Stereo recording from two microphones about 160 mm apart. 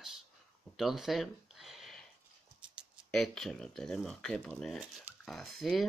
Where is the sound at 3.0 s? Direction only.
Centre (ahead or behind).